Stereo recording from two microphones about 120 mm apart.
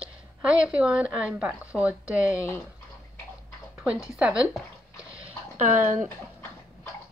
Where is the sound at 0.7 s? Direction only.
10° right (ahead or behind).